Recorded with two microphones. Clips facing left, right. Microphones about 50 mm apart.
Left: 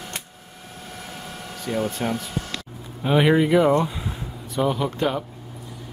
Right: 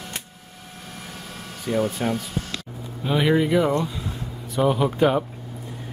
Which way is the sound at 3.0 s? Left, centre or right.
Centre.